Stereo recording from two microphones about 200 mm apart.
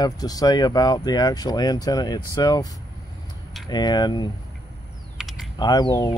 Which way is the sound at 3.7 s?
20° left (ahead or behind).